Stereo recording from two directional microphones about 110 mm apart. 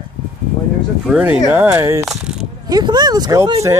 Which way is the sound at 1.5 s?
15° right (ahead or behind).